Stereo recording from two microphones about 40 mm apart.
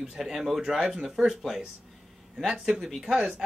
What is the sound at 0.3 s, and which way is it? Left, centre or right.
Speech, centre.